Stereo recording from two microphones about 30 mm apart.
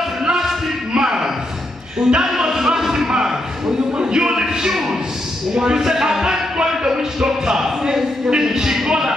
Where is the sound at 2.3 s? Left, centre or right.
Centre.